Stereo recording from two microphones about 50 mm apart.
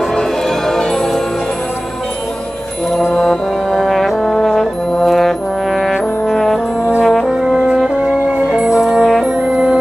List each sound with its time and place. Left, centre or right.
3.2 s brass instrument: centre
7.2 s brass instrument: centre
7.7 s music: centre
8.5 s brass instrument: centre